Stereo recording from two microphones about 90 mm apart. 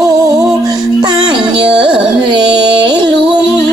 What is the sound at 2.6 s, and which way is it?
Music, 55° right (ahead or behind).